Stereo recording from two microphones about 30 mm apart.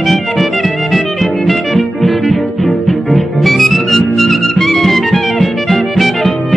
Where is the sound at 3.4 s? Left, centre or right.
Centre.